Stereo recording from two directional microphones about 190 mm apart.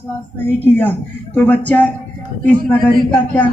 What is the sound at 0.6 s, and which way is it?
Speech, 10° left (ahead or behind).